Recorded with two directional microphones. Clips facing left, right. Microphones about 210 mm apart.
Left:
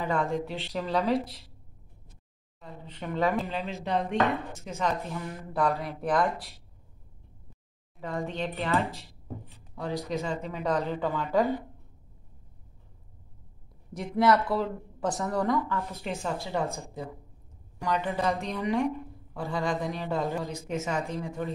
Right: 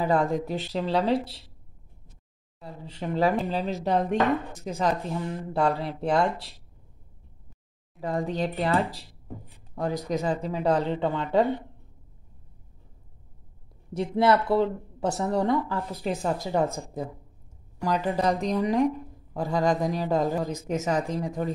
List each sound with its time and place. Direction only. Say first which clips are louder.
0.0 s speech: right 4 dB; 35° right (ahead or behind)
2.6 s speech: right 4 dB; 30° right (ahead or behind)
3.8 s chopping: right 4 dB; 45° right (ahead or behind)
4.6 s speech: right 4 dB; 35° right (ahead or behind)
8.0 s speech: right 5 dB; 35° right (ahead or behind)
9.8 s speech: right 4 dB; 45° right (ahead or behind); by 11.4 s 25° right (ahead or behind)
13.9 s speech: right 2 dB; 30° right (ahead or behind)
16.7 s chopping: right 4 dB; 45° right (ahead or behind)
17.8 s speech: right 3 dB; 35° right (ahead or behind)